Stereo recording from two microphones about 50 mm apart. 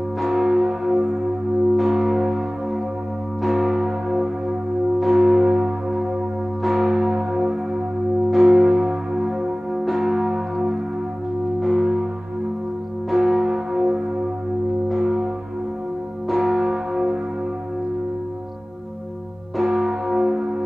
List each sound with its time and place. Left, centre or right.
0.2 s church bell: centre
1.8 s music: centre
3.4 s music: centre
9.8 s church bell: centre
11.6 s music: centre
13.1 s music: centre
16.3 s music: centre
19.5 s music: centre
19.8 s music: centre